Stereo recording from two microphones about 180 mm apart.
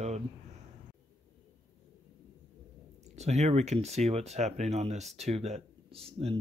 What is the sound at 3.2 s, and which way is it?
Speech, 40° right (ahead or behind).